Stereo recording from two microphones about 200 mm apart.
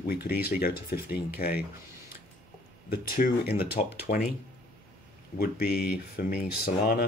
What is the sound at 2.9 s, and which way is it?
Speech, 50° left (ahead or behind).